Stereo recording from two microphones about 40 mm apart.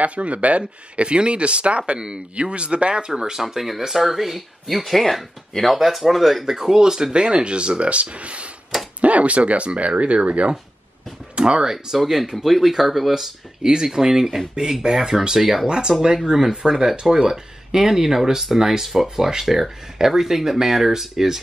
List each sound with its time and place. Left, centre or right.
0.0 s speech: right; by 3.4 s centre
3.4 s speech: centre; by 11.6 s right
11.6 s speech: centre
15.6 s speech: centre